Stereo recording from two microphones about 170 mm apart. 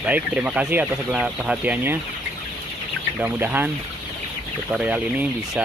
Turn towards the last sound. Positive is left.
turn(degrees=-10)  # may be behind; listen again after turning